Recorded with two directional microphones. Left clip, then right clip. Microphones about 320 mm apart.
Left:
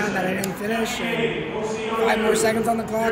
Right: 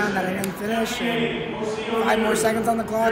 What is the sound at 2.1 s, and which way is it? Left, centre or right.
Speech, right.